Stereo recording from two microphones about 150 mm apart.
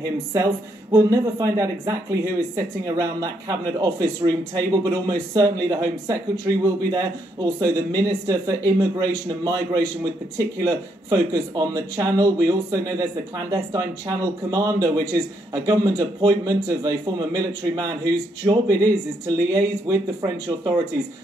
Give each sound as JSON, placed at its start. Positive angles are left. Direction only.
{"t": 0.0, "sound": "speech", "side_deg": -20}